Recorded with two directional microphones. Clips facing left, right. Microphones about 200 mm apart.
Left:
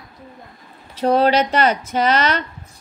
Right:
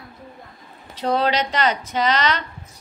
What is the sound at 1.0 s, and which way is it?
A woman's voice, 45° left (ahead or behind).